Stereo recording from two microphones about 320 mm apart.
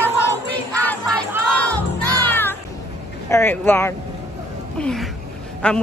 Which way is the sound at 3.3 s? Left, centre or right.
Centre.